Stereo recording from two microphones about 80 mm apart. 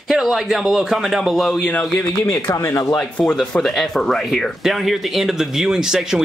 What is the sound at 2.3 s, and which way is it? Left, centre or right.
Speech, left.